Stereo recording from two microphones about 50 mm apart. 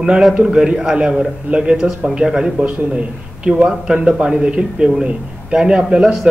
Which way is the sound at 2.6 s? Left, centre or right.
Right.